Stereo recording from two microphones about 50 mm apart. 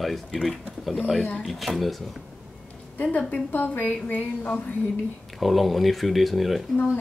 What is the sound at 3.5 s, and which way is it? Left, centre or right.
Speech, left.